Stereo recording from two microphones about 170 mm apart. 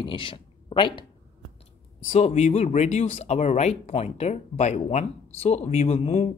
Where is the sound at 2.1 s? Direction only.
40° left (ahead or behind).